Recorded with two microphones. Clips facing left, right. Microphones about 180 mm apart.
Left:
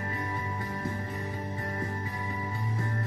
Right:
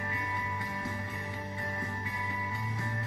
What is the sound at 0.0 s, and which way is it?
Music, 35° left (ahead or behind).